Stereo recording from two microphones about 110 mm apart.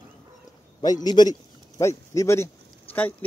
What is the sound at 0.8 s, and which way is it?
Speech, 40° left (ahead or behind).